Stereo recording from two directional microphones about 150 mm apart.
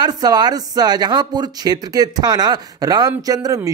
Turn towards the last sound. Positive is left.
turn(degrees=-25)  # may be behind; listen again after turning